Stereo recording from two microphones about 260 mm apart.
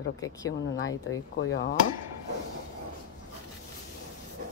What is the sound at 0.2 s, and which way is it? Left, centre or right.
Speech, centre.